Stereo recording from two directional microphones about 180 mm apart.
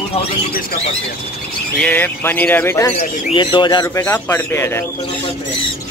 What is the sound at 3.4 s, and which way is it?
Speech, 25° left (ahead or behind).